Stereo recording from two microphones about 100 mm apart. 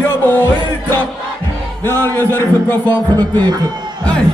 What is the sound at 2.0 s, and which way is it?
Speech, 20° left (ahead or behind).